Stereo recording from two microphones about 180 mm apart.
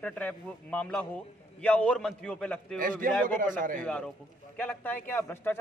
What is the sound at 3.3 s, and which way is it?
Speech, 50° right (ahead or behind).